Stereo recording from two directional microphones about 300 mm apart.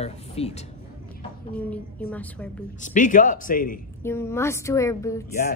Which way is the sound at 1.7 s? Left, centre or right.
Centre.